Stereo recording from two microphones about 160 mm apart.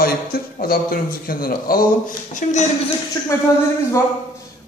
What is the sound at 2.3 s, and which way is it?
Speech, 50° left (ahead or behind).